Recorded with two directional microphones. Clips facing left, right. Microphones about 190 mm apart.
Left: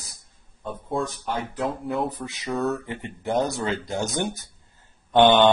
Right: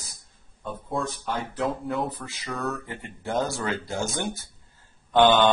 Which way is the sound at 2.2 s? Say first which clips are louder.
Left 6 dB; 20° left (ahead or behind).